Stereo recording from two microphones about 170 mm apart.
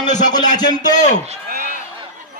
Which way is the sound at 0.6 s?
25° left (ahead or behind).